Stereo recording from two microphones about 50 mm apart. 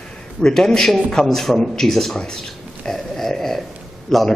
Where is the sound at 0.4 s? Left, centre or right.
Centre.